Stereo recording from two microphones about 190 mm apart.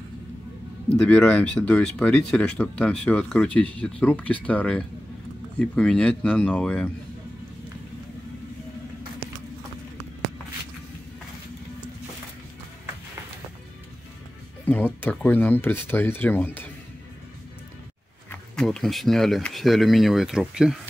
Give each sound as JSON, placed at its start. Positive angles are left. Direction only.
{"t": 0.9, "sound": "speech", "side_deg": 5}
{"t": 14.7, "sound": "speech", "side_deg": 10}
{"t": 18.3, "sound": "speech", "side_deg": 5}